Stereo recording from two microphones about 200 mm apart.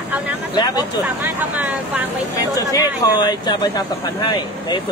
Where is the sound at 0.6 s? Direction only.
20° left (ahead or behind).